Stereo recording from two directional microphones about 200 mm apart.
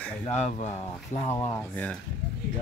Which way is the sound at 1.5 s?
10° left (ahead or behind).